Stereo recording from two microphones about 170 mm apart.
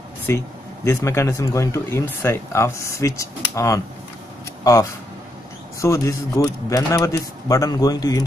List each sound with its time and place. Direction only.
0.3 s speech: 15° left (ahead or behind)
5.8 s speech: 20° left (ahead or behind)